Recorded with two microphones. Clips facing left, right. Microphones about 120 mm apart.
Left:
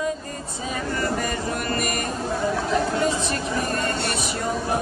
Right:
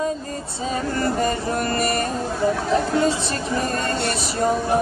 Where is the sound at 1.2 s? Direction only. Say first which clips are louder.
Right 4 dB; 30° right (ahead or behind).